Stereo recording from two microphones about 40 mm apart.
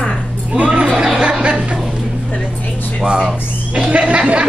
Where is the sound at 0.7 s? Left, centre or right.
Centre.